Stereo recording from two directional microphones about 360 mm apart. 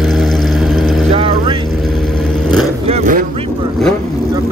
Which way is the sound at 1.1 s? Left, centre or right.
Centre.